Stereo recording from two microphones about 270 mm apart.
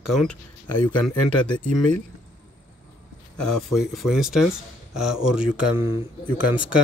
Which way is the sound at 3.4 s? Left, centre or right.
Centre.